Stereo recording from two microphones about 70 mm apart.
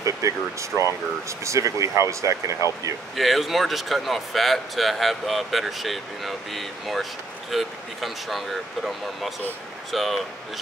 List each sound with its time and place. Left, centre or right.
0.0 s speech: right
3.2 s speech: centre